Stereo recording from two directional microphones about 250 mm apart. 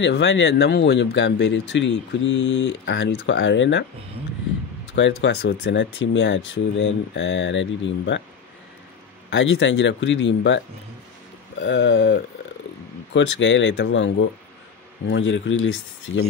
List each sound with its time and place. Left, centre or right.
0.0 s speech: left
4.9 s speech: left
9.3 s speech: left
11.6 s speech: left